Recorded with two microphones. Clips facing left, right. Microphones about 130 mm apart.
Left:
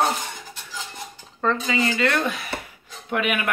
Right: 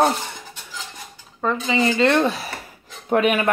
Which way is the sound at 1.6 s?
25° right (ahead or behind).